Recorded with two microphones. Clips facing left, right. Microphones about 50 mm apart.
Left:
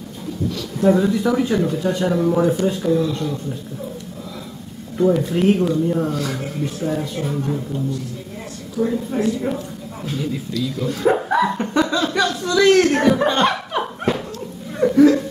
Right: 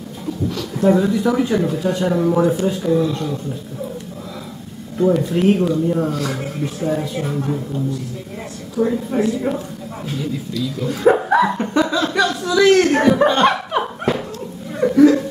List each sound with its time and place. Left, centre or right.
0.7 s speech: centre
4.9 s speech: centre
8.7 s a woman's voice: centre
10.8 s dog: centre
14.8 s a sound: centre